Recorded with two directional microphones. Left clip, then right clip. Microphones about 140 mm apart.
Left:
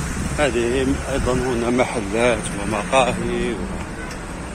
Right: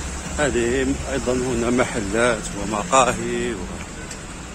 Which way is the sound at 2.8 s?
55° right (ahead or behind).